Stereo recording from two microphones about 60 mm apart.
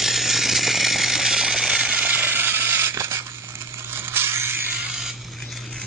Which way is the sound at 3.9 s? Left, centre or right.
Right.